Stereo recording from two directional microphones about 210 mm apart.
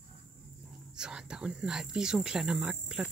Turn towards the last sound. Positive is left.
turn(degrees=-5)  # may be behind; listen again after turning